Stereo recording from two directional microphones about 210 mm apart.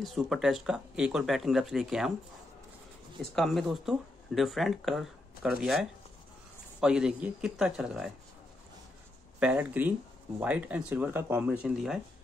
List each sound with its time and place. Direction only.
0.0 s speech: centre (ahead or behind)
3.2 s speech: centre (ahead or behind)
6.8 s speech: 5° right (ahead or behind)
9.4 s speech: 5° right (ahead or behind)